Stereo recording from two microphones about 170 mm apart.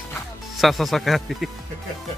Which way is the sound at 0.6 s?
Centre (ahead or behind).